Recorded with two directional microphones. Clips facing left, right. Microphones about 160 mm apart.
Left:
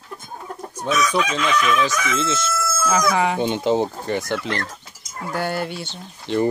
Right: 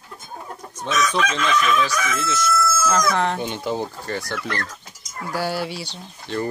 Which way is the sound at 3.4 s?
20° left (ahead or behind).